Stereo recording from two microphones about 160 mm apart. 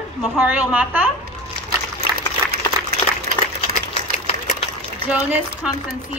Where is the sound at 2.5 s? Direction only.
75° right (ahead or behind).